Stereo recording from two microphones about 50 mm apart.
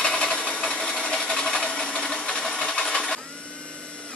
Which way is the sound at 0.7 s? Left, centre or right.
Centre.